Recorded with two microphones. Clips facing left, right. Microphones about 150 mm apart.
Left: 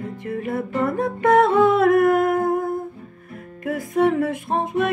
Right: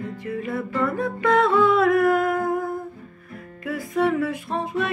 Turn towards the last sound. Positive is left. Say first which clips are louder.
# left 4 dB
turn(degrees=50)  # may be behind; listen again after turning